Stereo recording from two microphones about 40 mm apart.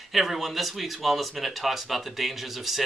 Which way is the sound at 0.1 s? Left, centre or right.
Centre.